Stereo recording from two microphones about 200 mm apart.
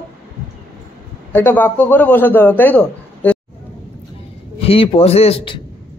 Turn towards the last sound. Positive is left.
turn(degrees=25)  # may be behind; listen again after turning